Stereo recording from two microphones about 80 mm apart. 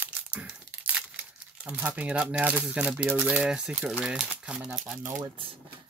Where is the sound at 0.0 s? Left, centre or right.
Centre.